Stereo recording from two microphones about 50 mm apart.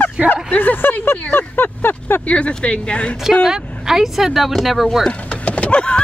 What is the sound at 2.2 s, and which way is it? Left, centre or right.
Speech, left.